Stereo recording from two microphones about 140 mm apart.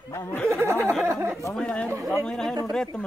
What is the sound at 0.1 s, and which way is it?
Snicker, 20° left (ahead or behind).